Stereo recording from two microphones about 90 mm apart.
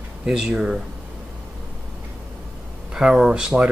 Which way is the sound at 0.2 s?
5° right (ahead or behind).